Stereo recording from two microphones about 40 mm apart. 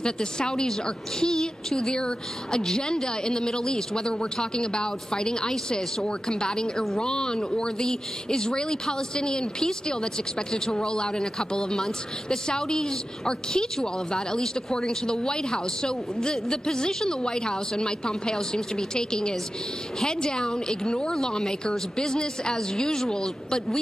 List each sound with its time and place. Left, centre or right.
0.0 s a woman's voice: centre